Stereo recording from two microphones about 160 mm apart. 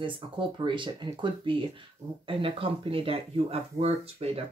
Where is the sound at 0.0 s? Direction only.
30° right (ahead or behind).